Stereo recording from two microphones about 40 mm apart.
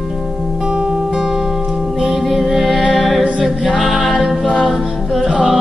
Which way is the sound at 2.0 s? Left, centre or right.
Centre.